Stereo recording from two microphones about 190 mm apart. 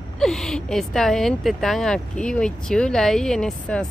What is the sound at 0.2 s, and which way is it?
Speech, centre (ahead or behind).